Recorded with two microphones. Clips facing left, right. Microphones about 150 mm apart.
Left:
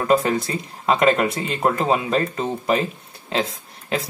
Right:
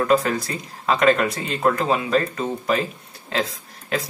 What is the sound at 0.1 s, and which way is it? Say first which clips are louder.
Speech: left 1 dB; 25° left (ahead or behind).